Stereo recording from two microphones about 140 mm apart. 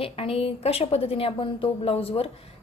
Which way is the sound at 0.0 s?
40° left (ahead or behind).